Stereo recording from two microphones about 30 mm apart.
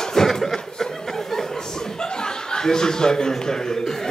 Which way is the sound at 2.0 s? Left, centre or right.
Left.